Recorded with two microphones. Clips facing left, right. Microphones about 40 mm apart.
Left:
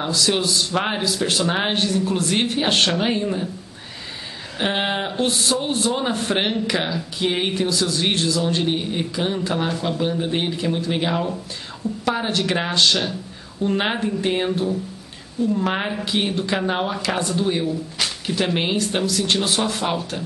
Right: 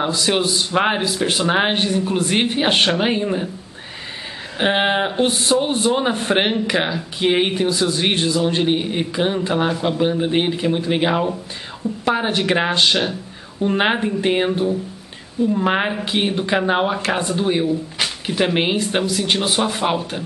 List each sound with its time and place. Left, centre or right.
0.0 s a man's voice: right
4.6 s a man's voice: centre